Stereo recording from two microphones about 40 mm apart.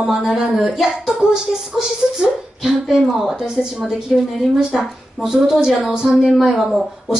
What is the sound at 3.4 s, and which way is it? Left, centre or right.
A woman's voice, centre.